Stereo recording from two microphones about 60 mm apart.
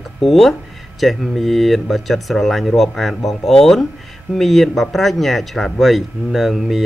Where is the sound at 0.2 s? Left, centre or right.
Centre.